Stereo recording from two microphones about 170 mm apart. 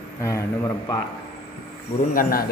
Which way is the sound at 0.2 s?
20° left (ahead or behind).